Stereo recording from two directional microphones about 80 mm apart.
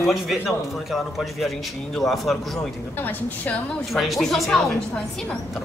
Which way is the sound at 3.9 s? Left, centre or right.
Centre.